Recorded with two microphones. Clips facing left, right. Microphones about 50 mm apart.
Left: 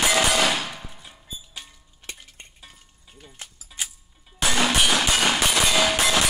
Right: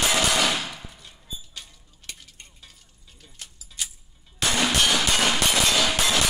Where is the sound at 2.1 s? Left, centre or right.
Left.